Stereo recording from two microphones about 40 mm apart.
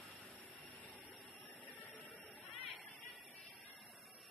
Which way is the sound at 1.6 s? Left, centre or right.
Left.